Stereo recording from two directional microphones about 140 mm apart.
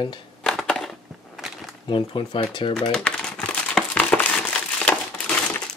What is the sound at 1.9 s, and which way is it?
Speech, 35° left (ahead or behind).